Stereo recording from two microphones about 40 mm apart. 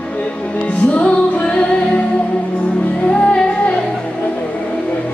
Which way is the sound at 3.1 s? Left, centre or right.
Left.